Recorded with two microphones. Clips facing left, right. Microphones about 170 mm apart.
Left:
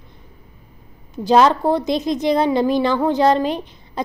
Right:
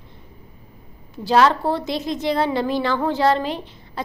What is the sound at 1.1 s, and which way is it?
A woman's voice, 20° left (ahead or behind).